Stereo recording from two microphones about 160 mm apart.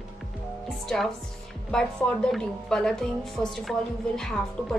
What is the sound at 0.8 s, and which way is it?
A woman's voice, centre (ahead or behind).